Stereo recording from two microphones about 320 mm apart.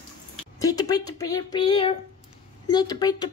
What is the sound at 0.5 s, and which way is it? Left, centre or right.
Speech, centre.